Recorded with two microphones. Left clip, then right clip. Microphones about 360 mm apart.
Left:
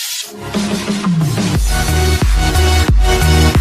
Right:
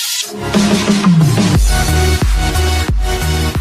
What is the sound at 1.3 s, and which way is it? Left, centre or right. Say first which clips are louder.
Music: right 3 dB; right.